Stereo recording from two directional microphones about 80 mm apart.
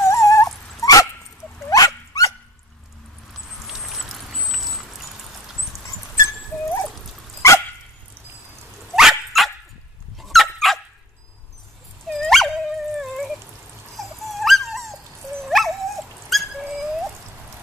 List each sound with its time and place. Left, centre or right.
0.0 s dog: left
3.6 s rodents: centre
6.2 s dog: left
8.9 s dog: centre
12.1 s dog: centre
13.0 s a sound: centre
13.9 s dog: centre